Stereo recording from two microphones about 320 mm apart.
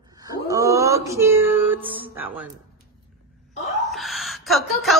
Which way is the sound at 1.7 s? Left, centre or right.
Centre.